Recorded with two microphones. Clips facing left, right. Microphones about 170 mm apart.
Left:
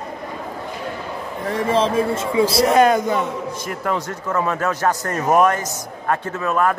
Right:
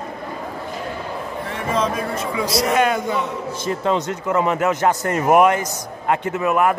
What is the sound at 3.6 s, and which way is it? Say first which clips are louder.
A man's voice: right 6 dB; 25° right (ahead or behind).